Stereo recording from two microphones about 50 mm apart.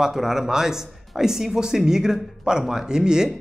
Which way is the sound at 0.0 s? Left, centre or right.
Centre.